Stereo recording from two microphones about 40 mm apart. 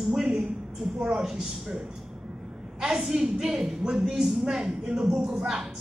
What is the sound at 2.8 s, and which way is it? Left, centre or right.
A woman's voice, centre.